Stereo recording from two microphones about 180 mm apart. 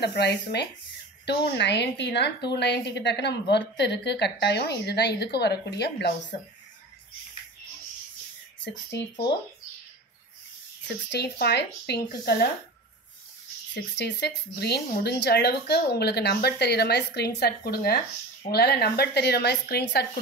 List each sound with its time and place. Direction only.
0.0 s a woman's voice: 65° left (ahead or behind)
11.1 s speech: 65° left (ahead or behind)
13.7 s speech: 70° left (ahead or behind)